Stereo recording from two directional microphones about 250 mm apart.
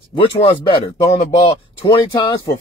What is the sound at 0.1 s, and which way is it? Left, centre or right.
A man's voice, left.